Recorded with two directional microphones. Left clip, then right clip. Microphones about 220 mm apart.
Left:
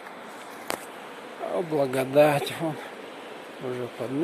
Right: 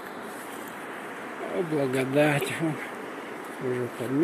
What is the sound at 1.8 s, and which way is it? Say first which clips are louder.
Speech: left 4 dB; 20° left (ahead or behind).